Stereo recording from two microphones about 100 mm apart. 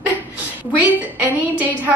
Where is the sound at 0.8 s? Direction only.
15° right (ahead or behind).